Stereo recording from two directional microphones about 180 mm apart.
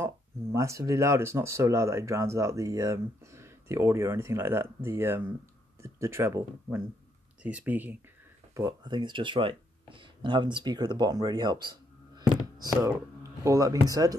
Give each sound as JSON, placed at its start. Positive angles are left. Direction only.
{"t": 0.0, "sound": "speech", "side_deg": -15}
{"t": 8.5, "sound": "speech", "side_deg": -25}